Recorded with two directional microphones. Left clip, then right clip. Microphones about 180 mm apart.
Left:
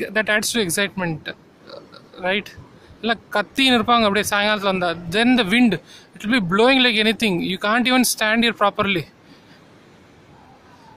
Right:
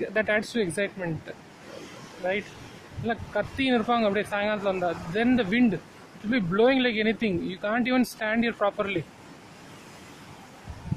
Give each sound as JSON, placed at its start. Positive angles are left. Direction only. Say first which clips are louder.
{"t": 0.0, "sound": "speech", "louder": "left 6 dB", "side_deg": 15}